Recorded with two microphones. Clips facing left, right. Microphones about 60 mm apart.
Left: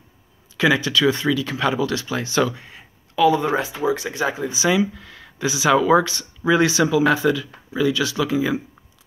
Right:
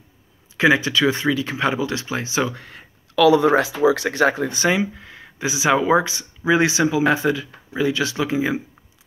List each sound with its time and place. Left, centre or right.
0.6 s speech: right
2.5 s speech: right
4.6 s speech: right